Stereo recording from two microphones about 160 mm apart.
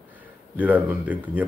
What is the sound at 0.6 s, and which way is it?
Speech, 10° right (ahead or behind).